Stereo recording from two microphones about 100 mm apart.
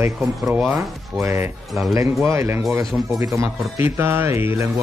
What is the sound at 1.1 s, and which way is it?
Speech, 25° right (ahead or behind).